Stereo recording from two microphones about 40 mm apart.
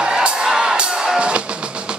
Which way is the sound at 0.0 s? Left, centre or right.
Right.